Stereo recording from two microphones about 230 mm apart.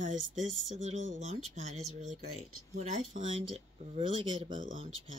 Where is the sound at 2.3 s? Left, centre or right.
Right.